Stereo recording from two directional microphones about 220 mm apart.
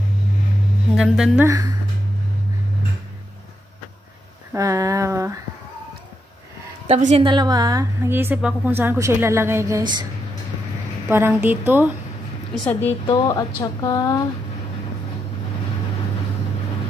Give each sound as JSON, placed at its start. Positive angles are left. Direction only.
{"t": 0.9, "sound": "speech", "side_deg": -5}
{"t": 4.5, "sound": "a woman's voice", "side_deg": -15}
{"t": 6.9, "sound": "a woman's voice", "side_deg": -30}
{"t": 11.1, "sound": "a woman's voice", "side_deg": -10}
{"t": 12.5, "sound": "a woman's voice", "side_deg": 5}
{"t": 13.0, "sound": "a woman's voice", "side_deg": 20}